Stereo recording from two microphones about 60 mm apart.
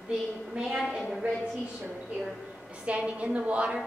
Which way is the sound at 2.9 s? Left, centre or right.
Right.